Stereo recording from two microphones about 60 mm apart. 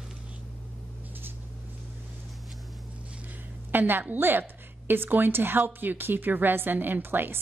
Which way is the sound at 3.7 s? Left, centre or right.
Right.